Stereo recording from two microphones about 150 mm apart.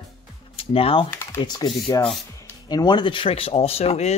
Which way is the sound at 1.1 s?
15° left (ahead or behind).